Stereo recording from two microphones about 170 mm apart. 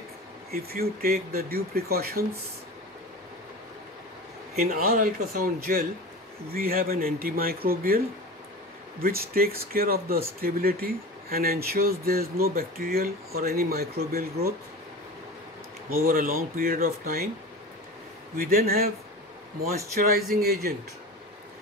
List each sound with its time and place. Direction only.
0.5 s speech: 65° right (ahead or behind)
4.6 s speech: 50° right (ahead or behind)
9.0 s speech: 60° right (ahead or behind)
16.1 s speech: 55° right (ahead or behind)
18.3 s speech: 60° right (ahead or behind)
19.9 s speech: 65° right (ahead or behind)